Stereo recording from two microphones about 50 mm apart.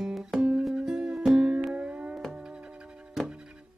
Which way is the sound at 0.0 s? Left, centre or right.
Centre.